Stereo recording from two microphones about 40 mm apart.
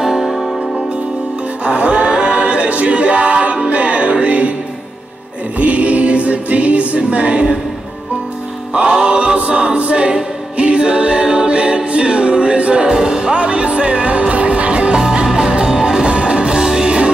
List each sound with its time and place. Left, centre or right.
0.0 s music: centre
1.6 s a capella: right
3.6 s music: right
5.6 s music: right
8.8 s music: right
9.4 s a capella: right